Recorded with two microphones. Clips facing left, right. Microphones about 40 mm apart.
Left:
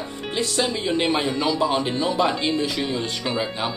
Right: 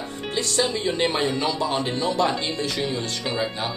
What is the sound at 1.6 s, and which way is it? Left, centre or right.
Speech, centre.